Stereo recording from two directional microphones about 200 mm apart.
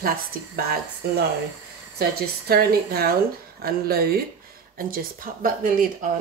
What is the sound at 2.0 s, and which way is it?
Speech, 50° right (ahead or behind).